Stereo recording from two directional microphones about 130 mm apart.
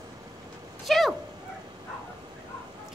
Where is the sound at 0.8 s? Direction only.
Centre (ahead or behind).